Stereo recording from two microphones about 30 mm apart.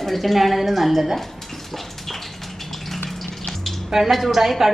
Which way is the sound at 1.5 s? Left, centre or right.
Centre.